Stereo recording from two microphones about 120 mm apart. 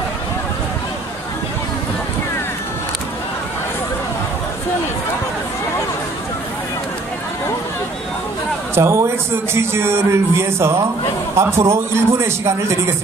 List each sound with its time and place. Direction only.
8.7 s a man's voice: 20° right (ahead or behind)